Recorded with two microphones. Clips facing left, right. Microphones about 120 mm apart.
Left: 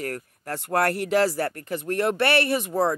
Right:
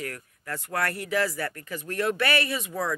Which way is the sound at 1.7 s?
55° left (ahead or behind).